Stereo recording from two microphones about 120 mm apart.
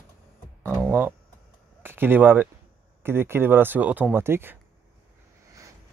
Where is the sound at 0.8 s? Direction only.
20° right (ahead or behind).